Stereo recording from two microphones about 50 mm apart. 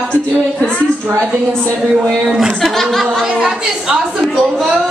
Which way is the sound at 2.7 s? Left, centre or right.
Centre.